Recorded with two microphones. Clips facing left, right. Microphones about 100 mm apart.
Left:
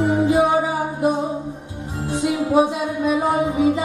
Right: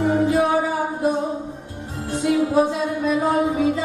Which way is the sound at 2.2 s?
15° left (ahead or behind).